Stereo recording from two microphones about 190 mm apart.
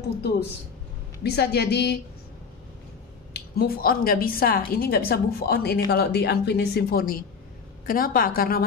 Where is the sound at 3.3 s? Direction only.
50° left (ahead or behind).